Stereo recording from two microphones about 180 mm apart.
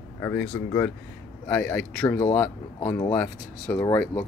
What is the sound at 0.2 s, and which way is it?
Speech, 15° left (ahead or behind).